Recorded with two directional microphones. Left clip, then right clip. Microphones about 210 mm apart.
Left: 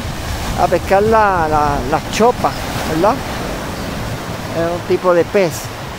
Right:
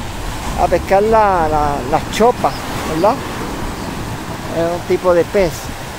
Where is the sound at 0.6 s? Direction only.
Centre (ahead or behind).